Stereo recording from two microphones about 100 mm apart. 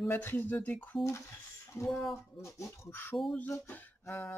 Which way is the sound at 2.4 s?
30° left (ahead or behind).